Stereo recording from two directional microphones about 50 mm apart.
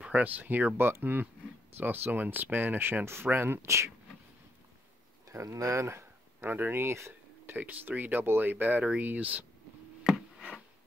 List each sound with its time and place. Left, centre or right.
0.1 s speech: right
0.7 s speech: right
3.6 s speech: right
5.3 s speech: right
6.4 s speech: right
7.4 s speech: right